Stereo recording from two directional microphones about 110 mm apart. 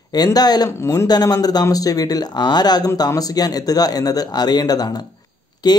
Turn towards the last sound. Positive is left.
turn(degrees=40)  # may be behind; listen again after turning